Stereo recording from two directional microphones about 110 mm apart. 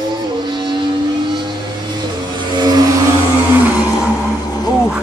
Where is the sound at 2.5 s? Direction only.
35° right (ahead or behind).